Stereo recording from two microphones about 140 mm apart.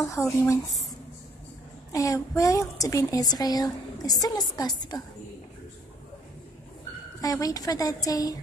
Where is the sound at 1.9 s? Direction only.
25° left (ahead or behind).